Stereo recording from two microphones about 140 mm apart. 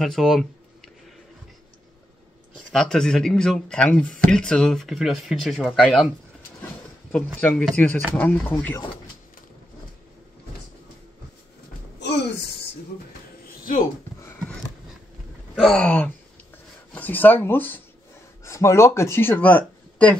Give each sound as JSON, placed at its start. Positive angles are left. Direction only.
{"t": 0.0, "sound": "speech", "side_deg": 0}
{"t": 2.7, "sound": "speech", "side_deg": 5}
{"t": 7.3, "sound": "speech", "side_deg": 10}
{"t": 13.5, "sound": "music", "side_deg": 90}
{"t": 15.5, "sound": "speech", "side_deg": 5}